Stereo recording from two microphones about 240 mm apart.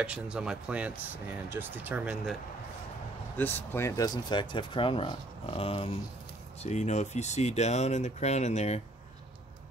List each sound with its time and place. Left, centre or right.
0.0 s speech: centre
3.3 s speech: centre; by 8.8 s left